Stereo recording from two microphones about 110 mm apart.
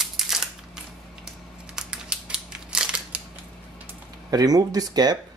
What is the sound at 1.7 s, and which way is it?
Scissors, 5° right (ahead or behind).